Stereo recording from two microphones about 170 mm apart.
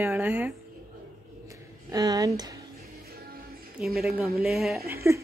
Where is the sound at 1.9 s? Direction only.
20° right (ahead or behind).